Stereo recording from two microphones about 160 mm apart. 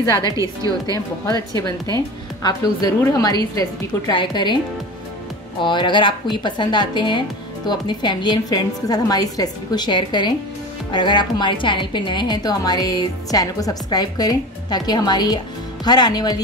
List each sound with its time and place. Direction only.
0.2 s a woman's voice: 20° right (ahead or behind)
0.9 s a woman's voice: 20° left (ahead or behind)
5.6 s a woman's voice: 30° left (ahead or behind)